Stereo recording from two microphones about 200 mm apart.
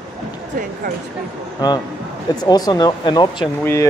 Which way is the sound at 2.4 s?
20° left (ahead or behind).